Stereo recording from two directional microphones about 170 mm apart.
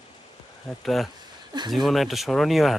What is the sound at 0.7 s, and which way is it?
Speech, centre (ahead or behind).